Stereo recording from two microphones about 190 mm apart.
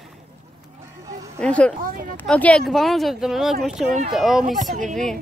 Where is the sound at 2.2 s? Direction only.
5° left (ahead or behind).